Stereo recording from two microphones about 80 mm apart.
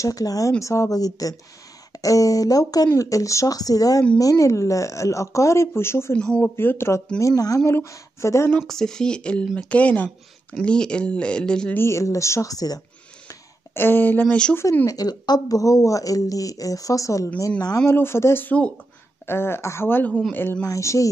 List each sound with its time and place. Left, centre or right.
0.0 s speech: left
6.1 s speech: centre
6.5 s speech: left
7.2 s speech: left
8.5 s speech: centre
11.7 s speech: left
13.7 s speech: left
14.5 s speech: left
14.9 s speech: left
17.4 s speech: left
17.8 s speech: left
20.1 s speech: centre
20.6 s speech: left